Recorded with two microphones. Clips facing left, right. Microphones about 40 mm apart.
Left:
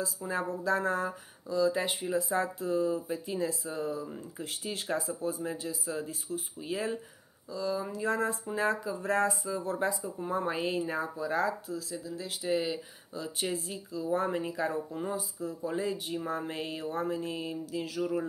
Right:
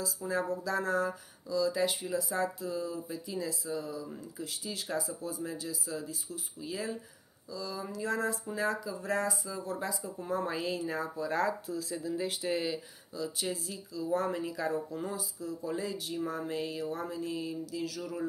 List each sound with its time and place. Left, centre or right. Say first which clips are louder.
0.3 s speech: left 2 dB; left
10.1 s speech: left 2 dB; left
11.1 s speech: even; centre
13.1 s speech: left 1 dB; left